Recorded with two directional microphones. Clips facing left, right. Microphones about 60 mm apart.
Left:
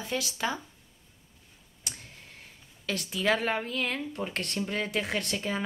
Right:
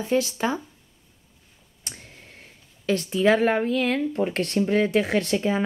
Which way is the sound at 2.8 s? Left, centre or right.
Right.